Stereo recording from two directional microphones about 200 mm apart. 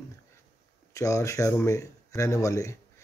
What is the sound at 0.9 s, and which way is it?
Speech, 15° left (ahead or behind).